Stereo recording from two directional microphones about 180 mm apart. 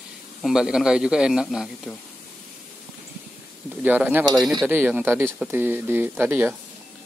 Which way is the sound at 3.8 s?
10° right (ahead or behind).